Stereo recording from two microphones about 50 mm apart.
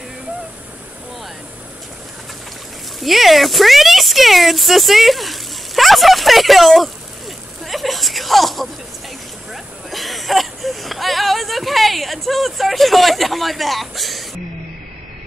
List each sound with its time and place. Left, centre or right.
3.0 s speech: centre